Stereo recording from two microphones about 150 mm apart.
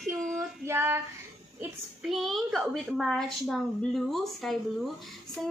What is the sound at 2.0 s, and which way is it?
A woman's voice, centre (ahead or behind).